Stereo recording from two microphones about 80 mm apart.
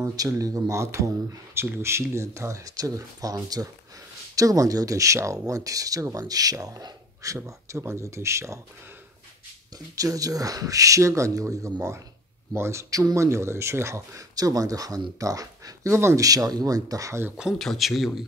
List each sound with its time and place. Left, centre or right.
0.0 s speech: right
7.3 s speech: right
9.9 s speech: right
14.3 s speech: right
16.3 s speech: right
17.6 s speech: centre